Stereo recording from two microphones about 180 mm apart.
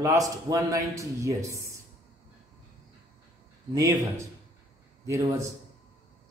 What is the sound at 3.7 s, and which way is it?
A man's voice, 20° right (ahead or behind).